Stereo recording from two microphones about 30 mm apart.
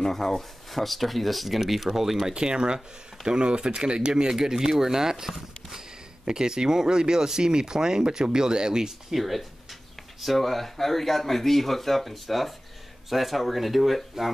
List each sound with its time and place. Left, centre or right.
0.0 s speech: centre
2.3 s speech: right
4.3 s speech: centre
9.1 s speech: centre